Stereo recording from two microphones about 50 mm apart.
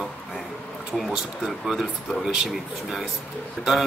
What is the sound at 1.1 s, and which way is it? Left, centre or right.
Speech, centre.